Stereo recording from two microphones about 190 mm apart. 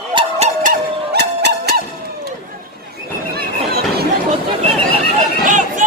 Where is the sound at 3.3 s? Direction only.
55° right (ahead or behind).